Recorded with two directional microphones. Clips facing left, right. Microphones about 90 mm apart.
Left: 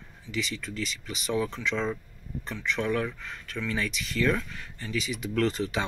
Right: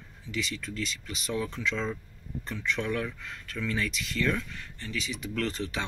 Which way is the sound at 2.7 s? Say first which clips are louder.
Left 6 dB; 5° left (ahead or behind).